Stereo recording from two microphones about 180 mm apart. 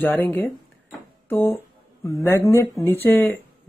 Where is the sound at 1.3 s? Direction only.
10° left (ahead or behind).